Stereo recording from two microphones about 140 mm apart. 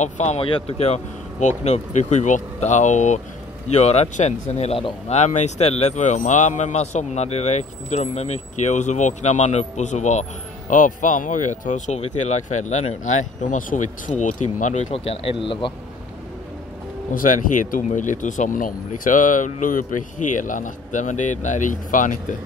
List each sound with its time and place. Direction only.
0.0 s speech: 55° left (ahead or behind)
0.5 s speech: 40° left (ahead or behind)
17.1 s speech: 75° left (ahead or behind)